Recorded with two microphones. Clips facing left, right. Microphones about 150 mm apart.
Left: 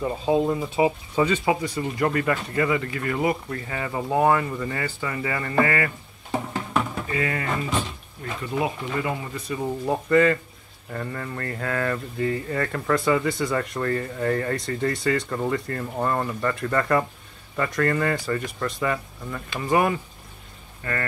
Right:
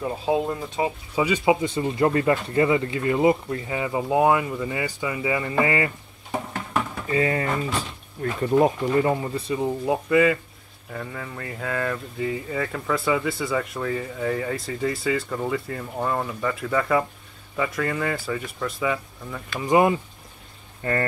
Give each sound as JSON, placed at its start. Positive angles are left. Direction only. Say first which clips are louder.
{"t": 0.0, "sound": "speech", "louder": "left 2 dB", "side_deg": -5}
{"t": 1.1, "sound": "speech", "louder": "right 1 dB", "side_deg": -10}
{"t": 7.1, "sound": "speech", "louder": "right 4 dB", "side_deg": -30}
{"t": 8.2, "sound": "speech", "louder": "right 7 dB", "side_deg": -45}
{"t": 9.6, "sound": "speech", "louder": "even", "side_deg": -10}
{"t": 19.6, "sound": "speech", "louder": "right 3 dB", "side_deg": -20}